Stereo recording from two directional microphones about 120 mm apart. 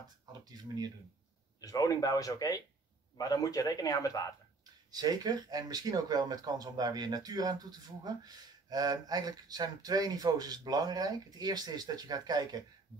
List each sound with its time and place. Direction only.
0.3 s speech: 35° right (ahead or behind)
1.6 s speech: 30° left (ahead or behind)
4.9 s speech: 35° right (ahead or behind)